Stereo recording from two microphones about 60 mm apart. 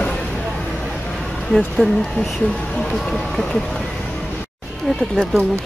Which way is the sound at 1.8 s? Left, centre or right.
Centre.